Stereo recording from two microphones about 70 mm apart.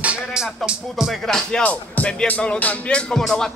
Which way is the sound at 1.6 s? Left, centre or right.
Left.